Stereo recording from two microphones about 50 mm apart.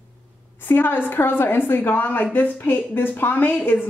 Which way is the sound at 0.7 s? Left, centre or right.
Left.